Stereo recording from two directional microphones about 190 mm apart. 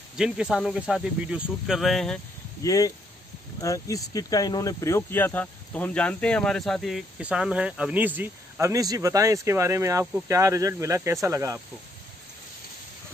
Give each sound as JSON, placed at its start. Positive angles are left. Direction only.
{"t": 0.2, "sound": "speech", "side_deg": -5}
{"t": 2.6, "sound": "speech", "side_deg": 20}